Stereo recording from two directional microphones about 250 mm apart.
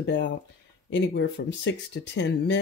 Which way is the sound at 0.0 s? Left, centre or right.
Left.